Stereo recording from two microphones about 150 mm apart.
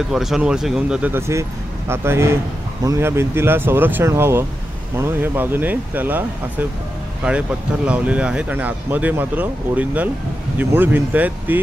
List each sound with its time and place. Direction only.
0.1 s speech: 5° right (ahead or behind)